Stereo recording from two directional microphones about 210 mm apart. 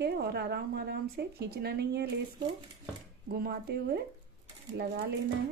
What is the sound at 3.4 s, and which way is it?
Speech, 45° right (ahead or behind).